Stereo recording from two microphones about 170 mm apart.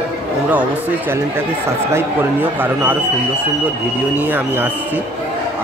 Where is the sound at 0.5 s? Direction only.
10° right (ahead or behind).